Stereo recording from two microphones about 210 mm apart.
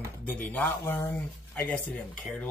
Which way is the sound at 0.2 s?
10° left (ahead or behind).